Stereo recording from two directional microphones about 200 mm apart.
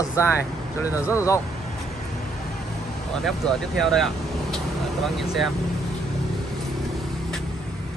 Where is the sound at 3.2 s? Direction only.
Centre (ahead or behind).